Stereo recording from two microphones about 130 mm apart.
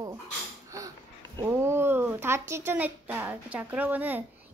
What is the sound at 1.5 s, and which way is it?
Speech, 20° right (ahead or behind).